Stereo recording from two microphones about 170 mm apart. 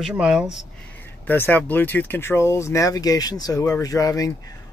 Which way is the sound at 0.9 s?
10° left (ahead or behind).